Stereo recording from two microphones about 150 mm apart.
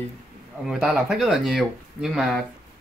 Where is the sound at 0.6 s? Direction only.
Centre (ahead or behind).